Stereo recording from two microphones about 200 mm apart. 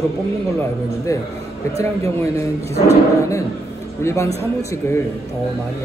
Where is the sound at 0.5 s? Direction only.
15° left (ahead or behind).